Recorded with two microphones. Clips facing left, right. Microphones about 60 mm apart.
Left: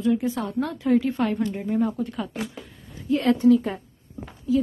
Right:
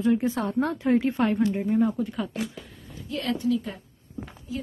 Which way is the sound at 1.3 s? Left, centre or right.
Centre.